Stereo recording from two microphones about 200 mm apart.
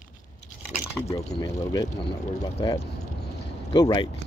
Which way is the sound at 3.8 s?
20° left (ahead or behind).